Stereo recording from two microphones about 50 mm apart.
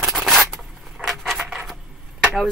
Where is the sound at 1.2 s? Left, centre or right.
Centre.